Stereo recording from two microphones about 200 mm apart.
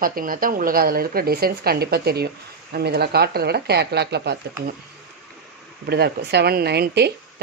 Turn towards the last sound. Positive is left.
turn(degrees=-55)  # may be behind; listen again after turning